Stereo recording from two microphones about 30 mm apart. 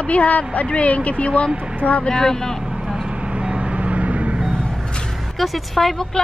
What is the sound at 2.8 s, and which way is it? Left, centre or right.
Vehicle, centre.